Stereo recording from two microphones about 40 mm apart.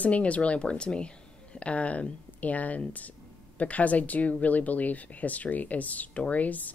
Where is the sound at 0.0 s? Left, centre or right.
Left.